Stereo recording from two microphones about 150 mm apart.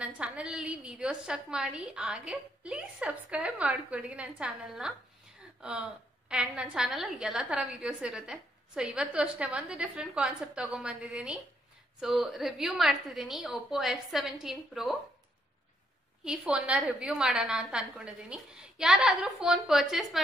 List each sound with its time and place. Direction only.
0.0 s a woman's voice: 5° right (ahead or behind)
16.3 s a woman's voice: 5° right (ahead or behind)